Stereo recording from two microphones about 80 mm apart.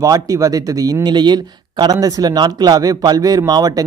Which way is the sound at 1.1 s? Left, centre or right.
Right.